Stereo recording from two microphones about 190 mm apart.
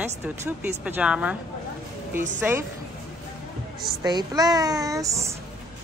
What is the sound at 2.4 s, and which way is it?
Speech, 10° right (ahead or behind).